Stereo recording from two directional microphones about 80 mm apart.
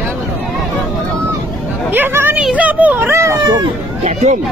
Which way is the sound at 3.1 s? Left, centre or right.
Right.